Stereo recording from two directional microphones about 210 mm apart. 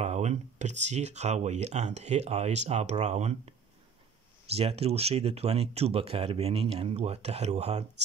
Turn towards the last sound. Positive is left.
turn(degrees=-30)  # may be behind; listen again after turning